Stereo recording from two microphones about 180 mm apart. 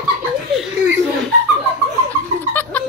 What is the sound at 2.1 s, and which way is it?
Laughter, 10° left (ahead or behind).